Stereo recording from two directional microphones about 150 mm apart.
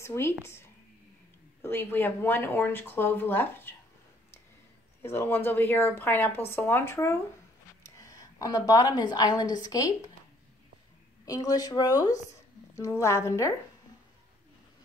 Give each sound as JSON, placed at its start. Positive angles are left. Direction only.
{"t": 0.0, "sound": "speech", "side_deg": 15}
{"t": 1.6, "sound": "speech", "side_deg": 15}
{"t": 5.0, "sound": "a woman's voice", "side_deg": 15}
{"t": 11.2, "sound": "speech", "side_deg": 25}